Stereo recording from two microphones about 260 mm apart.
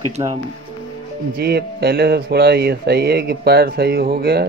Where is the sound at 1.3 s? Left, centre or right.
Right.